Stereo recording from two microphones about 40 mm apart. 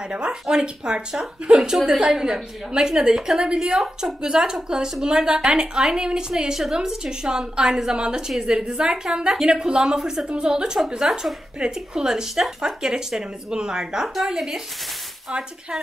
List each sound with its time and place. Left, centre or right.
0.1 s a woman's voice: right
14.0 s a woman's voice: centre